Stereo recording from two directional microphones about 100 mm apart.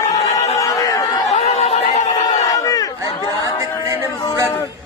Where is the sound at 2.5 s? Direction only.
35° left (ahead or behind).